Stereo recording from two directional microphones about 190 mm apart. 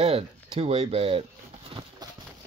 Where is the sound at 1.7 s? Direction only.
25° right (ahead or behind).